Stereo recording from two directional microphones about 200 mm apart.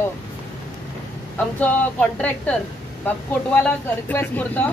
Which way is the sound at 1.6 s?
10° left (ahead or behind).